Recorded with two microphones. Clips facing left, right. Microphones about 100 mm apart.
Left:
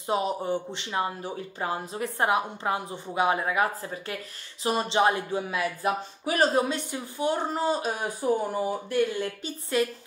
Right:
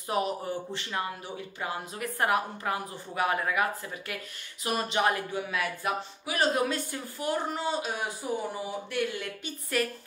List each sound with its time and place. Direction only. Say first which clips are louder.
0.0 s a woman's voice: left 3 dB; 25° left (ahead or behind)
6.6 s a woman's voice: left 1 dB; 20° left (ahead or behind)
7.5 s speech: left 4 dB; 35° left (ahead or behind)